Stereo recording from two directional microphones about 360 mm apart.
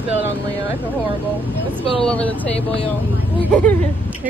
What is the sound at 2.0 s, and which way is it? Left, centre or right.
Speech, centre.